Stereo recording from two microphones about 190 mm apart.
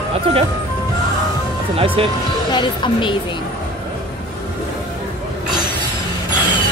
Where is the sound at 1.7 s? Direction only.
30° right (ahead or behind).